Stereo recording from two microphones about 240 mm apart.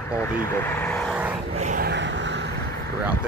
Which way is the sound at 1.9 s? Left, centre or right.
Right.